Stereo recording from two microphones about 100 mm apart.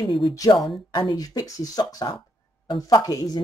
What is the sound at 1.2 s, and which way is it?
A woman's voice, 35° left (ahead or behind).